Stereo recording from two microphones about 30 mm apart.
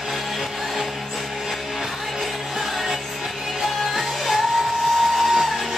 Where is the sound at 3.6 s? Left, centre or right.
Centre.